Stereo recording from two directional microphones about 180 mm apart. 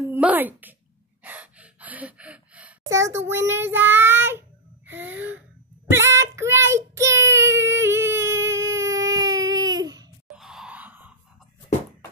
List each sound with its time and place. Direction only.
0.0 s a sound: 10° right (ahead or behind)
1.2 s gasp: 10° right (ahead or behind)
2.9 s a child's voice: 15° right (ahead or behind)
4.9 s gasp: 90° right
5.9 s child singing: 15° right (ahead or behind)
10.3 s groan: 5° right (ahead or behind)